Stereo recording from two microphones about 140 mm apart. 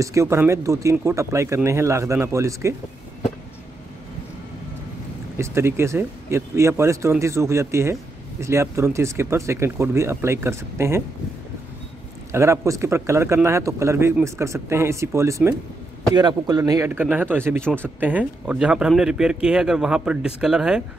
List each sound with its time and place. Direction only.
0.0 s speech: 20° right (ahead or behind)
5.4 s speech: 20° right (ahead or behind)
12.3 s speech: 20° right (ahead or behind); by 20.8 s 5° right (ahead or behind)